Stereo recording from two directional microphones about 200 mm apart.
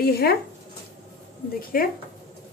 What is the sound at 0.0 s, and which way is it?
Speech, 50° left (ahead or behind).